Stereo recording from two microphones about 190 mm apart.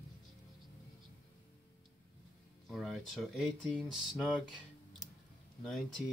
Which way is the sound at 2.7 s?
Centre (ahead or behind).